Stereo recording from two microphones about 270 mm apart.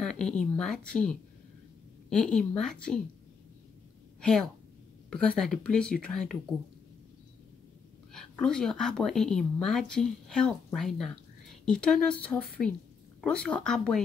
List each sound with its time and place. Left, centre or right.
0.0 s speech: centre
5.1 s speech: centre
8.1 s speech: centre